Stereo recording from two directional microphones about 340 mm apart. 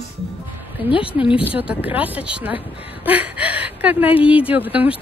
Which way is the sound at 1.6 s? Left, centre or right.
Centre.